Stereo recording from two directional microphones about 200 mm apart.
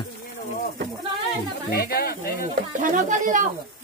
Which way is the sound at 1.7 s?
50° left (ahead or behind).